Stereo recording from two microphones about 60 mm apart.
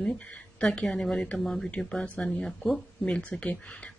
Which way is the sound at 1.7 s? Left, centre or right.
Centre.